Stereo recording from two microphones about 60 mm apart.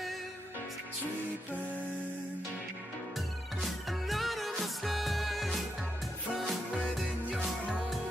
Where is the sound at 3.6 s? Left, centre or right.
Centre.